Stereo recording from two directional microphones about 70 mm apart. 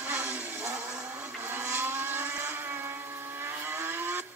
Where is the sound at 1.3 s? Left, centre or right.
Right.